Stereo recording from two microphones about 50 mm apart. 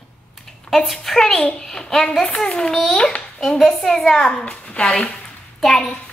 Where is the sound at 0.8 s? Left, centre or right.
Centre.